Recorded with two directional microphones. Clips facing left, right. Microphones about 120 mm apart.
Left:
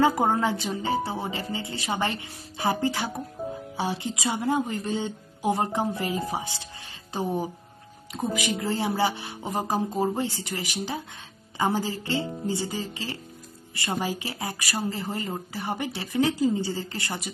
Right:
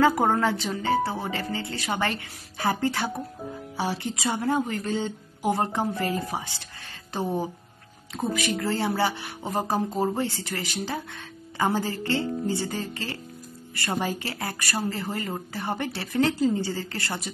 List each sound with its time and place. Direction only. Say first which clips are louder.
0.0 s speech: right 1 dB; 20° left (ahead or behind)
8.4 s speech: right 1 dB; 15° left (ahead or behind)